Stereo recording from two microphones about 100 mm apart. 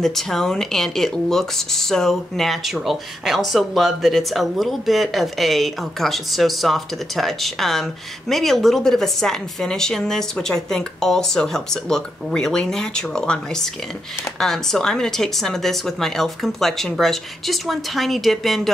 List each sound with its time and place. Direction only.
0.0 s speech: 5° left (ahead or behind)